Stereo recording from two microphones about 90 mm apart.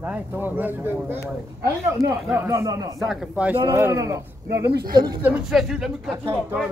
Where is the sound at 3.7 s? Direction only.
30° right (ahead or behind).